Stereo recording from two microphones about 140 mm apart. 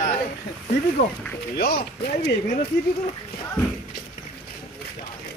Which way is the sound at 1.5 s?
90° left.